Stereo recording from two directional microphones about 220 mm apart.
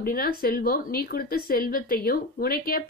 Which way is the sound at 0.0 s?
40° left (ahead or behind).